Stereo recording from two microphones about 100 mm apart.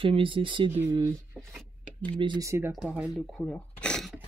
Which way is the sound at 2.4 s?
30° right (ahead or behind).